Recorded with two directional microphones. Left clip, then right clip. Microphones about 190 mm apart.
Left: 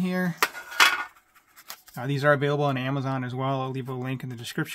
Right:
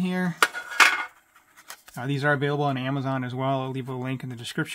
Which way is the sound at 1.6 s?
Centre (ahead or behind).